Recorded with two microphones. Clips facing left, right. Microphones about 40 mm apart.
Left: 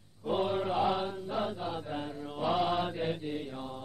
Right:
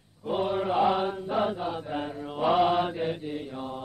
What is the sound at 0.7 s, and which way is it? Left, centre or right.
Mantra, centre.